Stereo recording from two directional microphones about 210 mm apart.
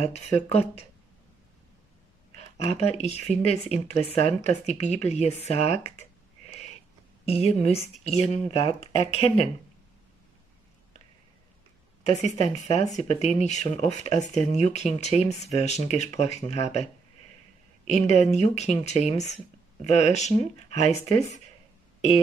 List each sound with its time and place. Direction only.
0.0 s speech: 30° left (ahead or behind)
2.3 s speech: 30° left (ahead or behind)
7.2 s speech: 30° left (ahead or behind)
12.5 s speech: 30° left (ahead or behind)
17.8 s speech: 30° left (ahead or behind)